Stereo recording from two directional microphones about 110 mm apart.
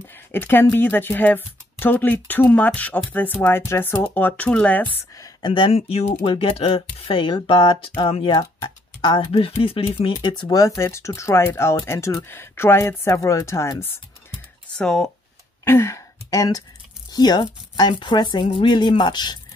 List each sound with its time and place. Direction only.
0.1 s speech: 20° left (ahead or behind)
5.4 s speech: 50° left (ahead or behind); by 6.8 s 65° left (ahead or behind)
7.1 s speech: 50° left (ahead or behind)
10.6 s speech: 25° left (ahead or behind)
14.8 s speech: 5° left (ahead or behind)
15.6 s speech: 25° left (ahead or behind); by 19.3 s 40° left (ahead or behind)